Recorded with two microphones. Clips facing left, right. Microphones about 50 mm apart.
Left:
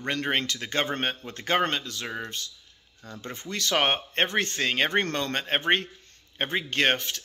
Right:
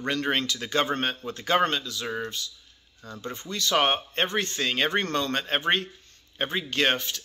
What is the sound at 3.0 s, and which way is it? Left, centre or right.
Speech, left.